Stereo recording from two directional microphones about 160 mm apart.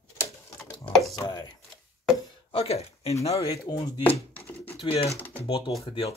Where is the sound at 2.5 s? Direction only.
40° left (ahead or behind).